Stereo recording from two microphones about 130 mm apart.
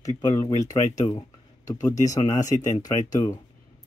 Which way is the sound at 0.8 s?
65° left (ahead or behind).